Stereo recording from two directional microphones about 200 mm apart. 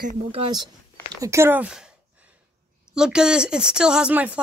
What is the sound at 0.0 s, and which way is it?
Speech, 30° right (ahead or behind).